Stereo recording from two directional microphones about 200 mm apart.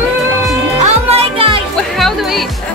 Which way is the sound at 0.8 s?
30° right (ahead or behind).